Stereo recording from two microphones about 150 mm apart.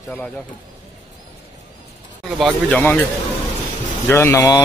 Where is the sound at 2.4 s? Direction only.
10° left (ahead or behind).